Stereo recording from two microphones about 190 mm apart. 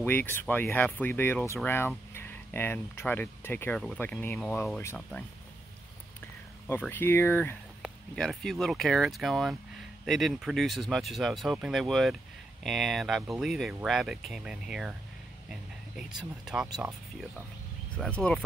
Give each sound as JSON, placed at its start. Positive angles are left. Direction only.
{"t": 0.0, "sound": "speech", "side_deg": 10}
{"t": 6.7, "sound": "speech", "side_deg": 10}
{"t": 7.8, "sound": "speech", "side_deg": 0}
{"t": 16.0, "sound": "speech", "side_deg": -5}
{"t": 17.9, "sound": "speech", "side_deg": 5}